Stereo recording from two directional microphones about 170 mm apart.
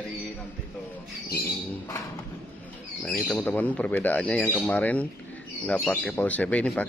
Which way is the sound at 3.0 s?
5° left (ahead or behind).